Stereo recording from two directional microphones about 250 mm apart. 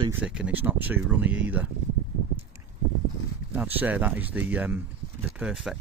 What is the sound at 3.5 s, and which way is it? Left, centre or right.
Speech, centre.